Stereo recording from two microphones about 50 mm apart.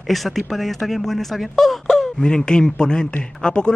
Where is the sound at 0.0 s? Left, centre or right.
Centre.